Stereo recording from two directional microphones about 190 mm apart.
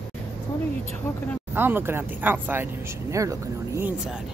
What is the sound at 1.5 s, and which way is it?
Speech, 10° right (ahead or behind).